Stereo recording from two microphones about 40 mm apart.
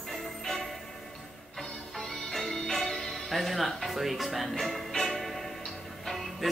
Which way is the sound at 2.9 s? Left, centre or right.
Centre.